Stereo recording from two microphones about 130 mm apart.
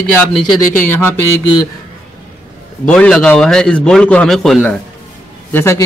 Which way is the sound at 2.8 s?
10° left (ahead or behind).